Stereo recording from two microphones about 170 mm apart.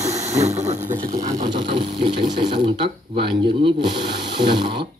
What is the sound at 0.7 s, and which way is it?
Speech, 45° right (ahead or behind).